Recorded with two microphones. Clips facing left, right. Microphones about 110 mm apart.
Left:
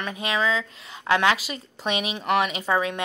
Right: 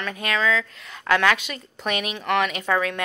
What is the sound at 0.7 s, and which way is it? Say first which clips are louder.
Speech: right 1 dB; 30° left (ahead or behind).